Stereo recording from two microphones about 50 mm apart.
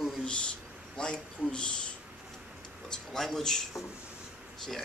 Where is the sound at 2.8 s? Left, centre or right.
Centre.